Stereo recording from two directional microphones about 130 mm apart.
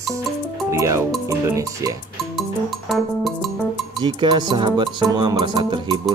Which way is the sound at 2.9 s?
Centre (ahead or behind).